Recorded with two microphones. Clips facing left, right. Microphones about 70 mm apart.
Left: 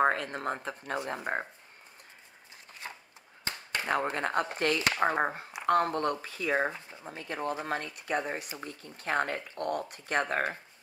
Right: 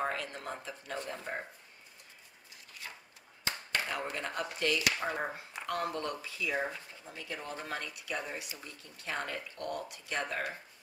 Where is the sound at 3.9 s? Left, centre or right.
Left.